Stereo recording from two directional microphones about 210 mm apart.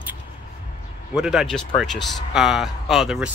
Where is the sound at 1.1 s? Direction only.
5° right (ahead or behind).